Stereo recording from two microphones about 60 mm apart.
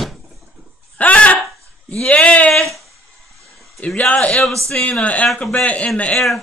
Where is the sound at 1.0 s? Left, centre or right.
Left.